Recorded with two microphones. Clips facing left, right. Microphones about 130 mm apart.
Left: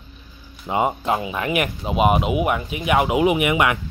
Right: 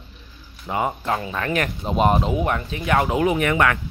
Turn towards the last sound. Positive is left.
turn(degrees=15)  # may be behind; listen again after turning